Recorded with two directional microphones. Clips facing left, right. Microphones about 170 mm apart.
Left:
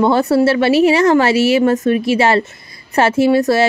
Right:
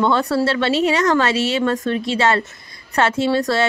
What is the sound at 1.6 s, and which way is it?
A woman's voice, 25° left (ahead or behind).